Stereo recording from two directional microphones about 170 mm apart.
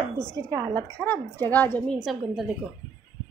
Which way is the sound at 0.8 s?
5° left (ahead or behind).